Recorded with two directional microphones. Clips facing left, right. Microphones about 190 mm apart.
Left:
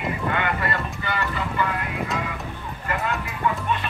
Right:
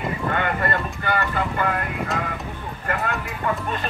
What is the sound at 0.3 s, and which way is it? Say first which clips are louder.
Clip-clop: right 3 dB; 45° right (ahead or behind).